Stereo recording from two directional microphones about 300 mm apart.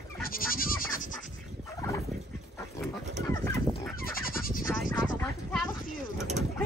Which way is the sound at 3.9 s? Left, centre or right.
Left.